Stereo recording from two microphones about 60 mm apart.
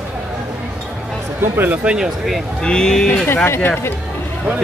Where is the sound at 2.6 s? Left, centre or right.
Centre.